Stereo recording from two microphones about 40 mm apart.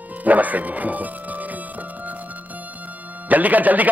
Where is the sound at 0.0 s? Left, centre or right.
Right.